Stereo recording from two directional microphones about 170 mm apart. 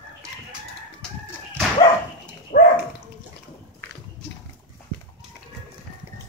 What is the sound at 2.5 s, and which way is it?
Dog, 55° left (ahead or behind).